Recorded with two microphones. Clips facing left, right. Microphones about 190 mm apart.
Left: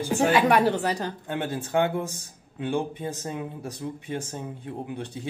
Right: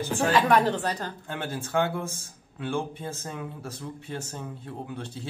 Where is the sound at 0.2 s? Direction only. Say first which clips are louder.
Left 2 dB; 10° left (ahead or behind).